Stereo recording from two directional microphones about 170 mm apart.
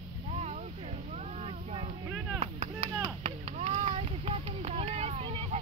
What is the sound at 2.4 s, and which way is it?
Chop, 35° right (ahead or behind).